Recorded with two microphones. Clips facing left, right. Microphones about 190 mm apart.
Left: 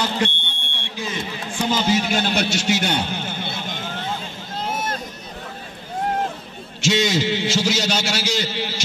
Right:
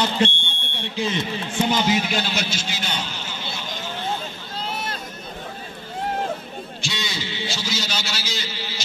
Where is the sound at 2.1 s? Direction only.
55° left (ahead or behind).